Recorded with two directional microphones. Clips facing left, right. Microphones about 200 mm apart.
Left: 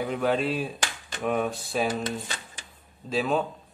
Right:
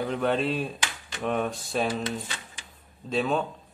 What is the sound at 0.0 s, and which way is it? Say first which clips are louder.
A man's voice: even; 5° left (ahead or behind).